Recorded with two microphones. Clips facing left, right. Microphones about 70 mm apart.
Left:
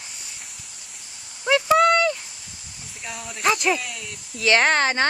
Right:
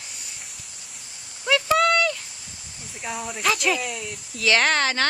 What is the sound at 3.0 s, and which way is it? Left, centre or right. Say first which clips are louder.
Speech: left 1 dB; centre.